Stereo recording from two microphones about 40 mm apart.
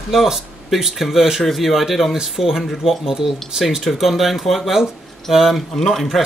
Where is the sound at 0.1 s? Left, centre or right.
Centre.